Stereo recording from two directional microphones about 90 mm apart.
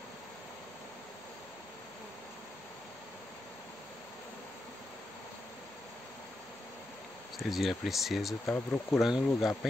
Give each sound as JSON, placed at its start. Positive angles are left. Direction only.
{"t": 7.4, "sound": "speech", "side_deg": 0}
{"t": 8.5, "sound": "speech", "side_deg": 30}
{"t": 9.0, "sound": "speech", "side_deg": -5}